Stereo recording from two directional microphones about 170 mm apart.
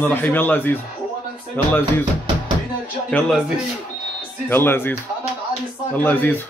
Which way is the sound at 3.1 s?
5° left (ahead or behind).